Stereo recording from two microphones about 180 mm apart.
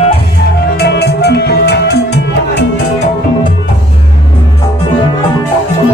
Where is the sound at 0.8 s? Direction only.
65° left (ahead or behind).